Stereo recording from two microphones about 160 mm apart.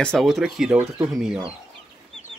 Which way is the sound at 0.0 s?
5° left (ahead or behind).